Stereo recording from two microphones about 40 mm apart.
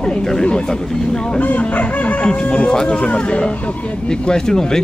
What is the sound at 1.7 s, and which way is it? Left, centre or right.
Music, left.